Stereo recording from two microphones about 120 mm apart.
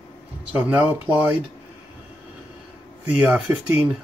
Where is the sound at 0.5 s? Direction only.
15° right (ahead or behind).